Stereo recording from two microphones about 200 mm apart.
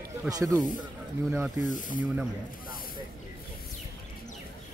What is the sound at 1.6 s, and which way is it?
Speech, 40° left (ahead or behind).